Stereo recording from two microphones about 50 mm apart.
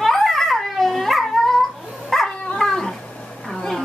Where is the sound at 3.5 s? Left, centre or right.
Centre.